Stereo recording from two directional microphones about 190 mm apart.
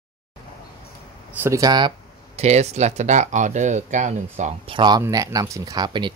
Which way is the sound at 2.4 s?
35° right (ahead or behind).